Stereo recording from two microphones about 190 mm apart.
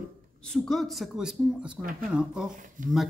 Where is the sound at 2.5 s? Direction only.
45° right (ahead or behind).